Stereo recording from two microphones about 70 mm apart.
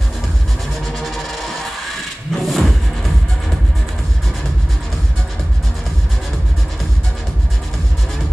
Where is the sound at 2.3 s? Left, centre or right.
Centre.